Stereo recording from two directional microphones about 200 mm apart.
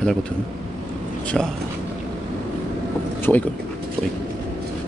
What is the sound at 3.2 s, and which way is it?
Speech, 10° left (ahead or behind).